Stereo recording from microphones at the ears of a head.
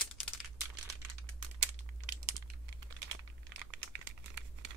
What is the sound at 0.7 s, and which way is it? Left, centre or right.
Crumpling, right.